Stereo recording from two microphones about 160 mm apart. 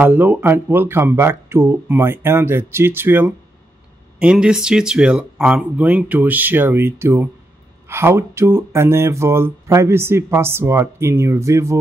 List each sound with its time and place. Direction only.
0.0 s speech: 10° right (ahead or behind)